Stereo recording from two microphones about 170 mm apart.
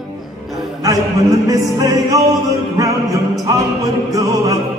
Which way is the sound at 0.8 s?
20° right (ahead or behind).